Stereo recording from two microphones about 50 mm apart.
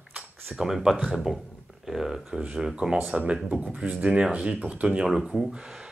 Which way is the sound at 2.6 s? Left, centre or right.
Centre.